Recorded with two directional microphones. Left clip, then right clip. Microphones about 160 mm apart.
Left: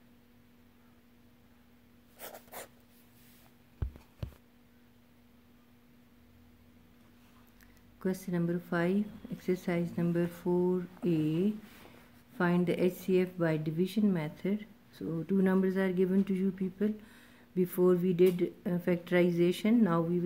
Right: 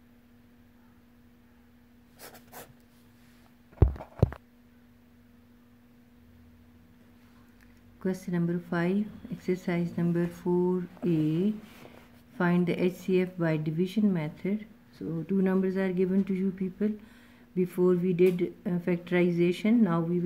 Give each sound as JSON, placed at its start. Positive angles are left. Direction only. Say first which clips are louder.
{"t": 2.2, "sound": "writing", "louder": "left 1 dB", "side_deg": 20}
{"t": 8.0, "sound": "a woman's voice", "louder": "right 2 dB", "side_deg": 0}